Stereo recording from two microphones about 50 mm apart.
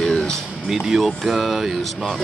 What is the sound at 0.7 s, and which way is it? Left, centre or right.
Speech, centre.